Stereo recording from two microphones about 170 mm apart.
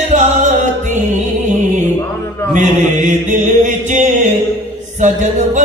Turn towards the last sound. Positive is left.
turn(degrees=-45)  # may be behind; listen again after turning